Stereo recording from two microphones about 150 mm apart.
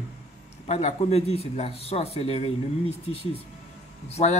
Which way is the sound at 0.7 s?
45° left (ahead or behind).